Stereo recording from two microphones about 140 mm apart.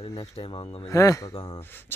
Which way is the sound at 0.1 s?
35° left (ahead or behind).